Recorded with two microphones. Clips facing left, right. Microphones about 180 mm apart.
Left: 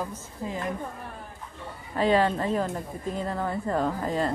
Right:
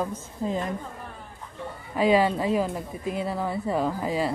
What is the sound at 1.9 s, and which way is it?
Speech, 10° right (ahead or behind).